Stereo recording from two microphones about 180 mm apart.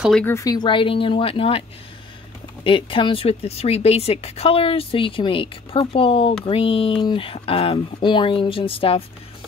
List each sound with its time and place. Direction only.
0.0 s speech: 5° left (ahead or behind)
0.3 s speech: 20° left (ahead or behind)
2.6 s speech: 30° left (ahead or behind)